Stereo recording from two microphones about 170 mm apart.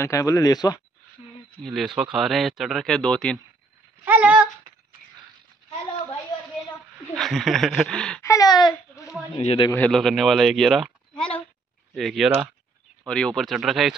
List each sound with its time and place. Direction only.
0.0 s speech: 20° left (ahead or behind)
1.6 s speech: centre (ahead or behind)
4.0 s speech: 10° right (ahead or behind)
7.2 s speech: centre (ahead or behind)
8.2 s speech: 20° left (ahead or behind)
9.4 s a man's voice: 35° left (ahead or behind)
9.7 s speech: 5° left (ahead or behind)
11.9 s speech: centre (ahead or behind)